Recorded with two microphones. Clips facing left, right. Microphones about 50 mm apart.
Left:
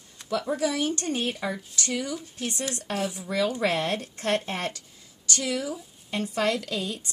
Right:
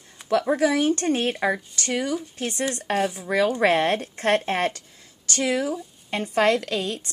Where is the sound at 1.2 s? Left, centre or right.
Right.